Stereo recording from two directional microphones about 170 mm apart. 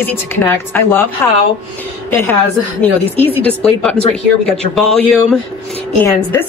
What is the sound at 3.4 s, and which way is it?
A woman's voice, 10° left (ahead or behind).